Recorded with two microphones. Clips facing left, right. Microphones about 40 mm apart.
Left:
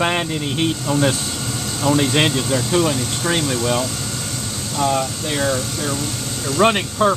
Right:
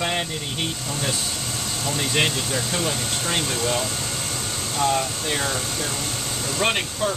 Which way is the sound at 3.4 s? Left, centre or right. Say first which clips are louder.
Left 4 dB; centre.